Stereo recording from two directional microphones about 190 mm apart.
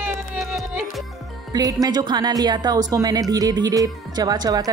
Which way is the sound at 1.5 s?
20° right (ahead or behind).